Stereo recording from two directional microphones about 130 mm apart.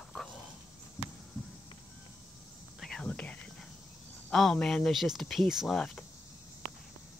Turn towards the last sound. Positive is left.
turn(degrees=5)  # may be behind; listen again after turning